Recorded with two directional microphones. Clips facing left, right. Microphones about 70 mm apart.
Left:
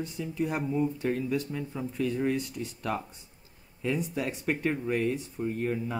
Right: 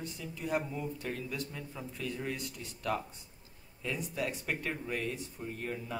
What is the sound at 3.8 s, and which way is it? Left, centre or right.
Speech, left.